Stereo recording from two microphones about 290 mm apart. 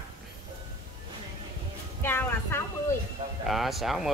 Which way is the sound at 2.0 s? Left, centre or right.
Centre.